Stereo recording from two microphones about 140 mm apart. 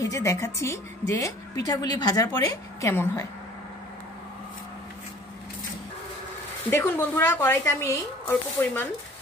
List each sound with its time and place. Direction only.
0.0 s a woman's voice: 20° left (ahead or behind)
6.7 s speech: 15° left (ahead or behind)